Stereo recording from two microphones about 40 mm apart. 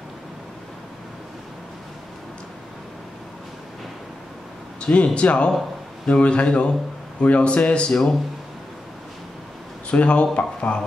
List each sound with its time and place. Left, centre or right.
4.7 s a man's voice: left
7.9 s speech: centre
9.8 s speech: left